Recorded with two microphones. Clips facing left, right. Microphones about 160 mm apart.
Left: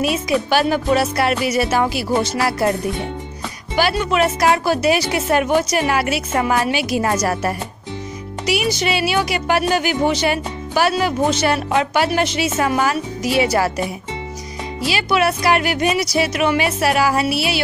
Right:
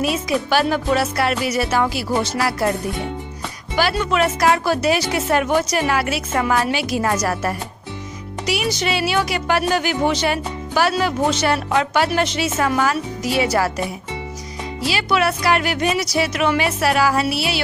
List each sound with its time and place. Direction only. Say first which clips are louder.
0.0 s speech: left 2 dB; 15° left (ahead or behind)
3.7 s a woman's voice: left 1 dB; 15° left (ahead or behind)
14.9 s speech: left 1 dB; 15° left (ahead or behind)